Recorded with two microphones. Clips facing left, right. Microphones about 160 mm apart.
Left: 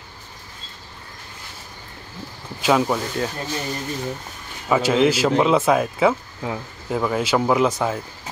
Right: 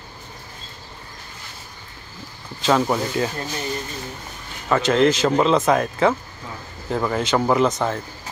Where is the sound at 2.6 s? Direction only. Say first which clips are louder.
Even; 5° left (ahead or behind).